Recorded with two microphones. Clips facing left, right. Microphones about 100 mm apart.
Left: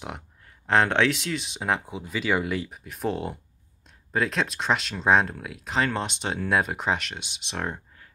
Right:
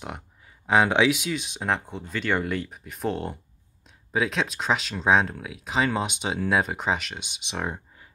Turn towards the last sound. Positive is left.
turn(degrees=-5)  # may be behind; listen again after turning